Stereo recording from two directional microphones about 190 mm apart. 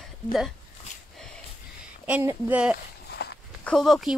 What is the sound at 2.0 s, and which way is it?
Speech, 10° right (ahead or behind).